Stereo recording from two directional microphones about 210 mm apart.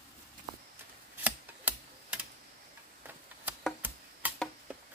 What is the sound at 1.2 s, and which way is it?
Typewriter, 5° right (ahead or behind).